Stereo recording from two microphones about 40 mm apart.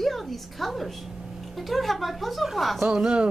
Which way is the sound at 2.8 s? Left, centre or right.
Right.